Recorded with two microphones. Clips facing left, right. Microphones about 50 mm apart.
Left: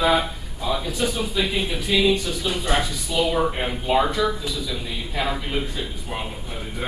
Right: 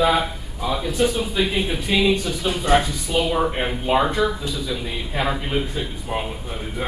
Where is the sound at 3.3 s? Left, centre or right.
Centre.